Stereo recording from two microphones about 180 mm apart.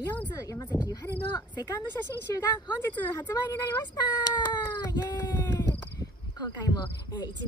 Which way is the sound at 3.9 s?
25° left (ahead or behind).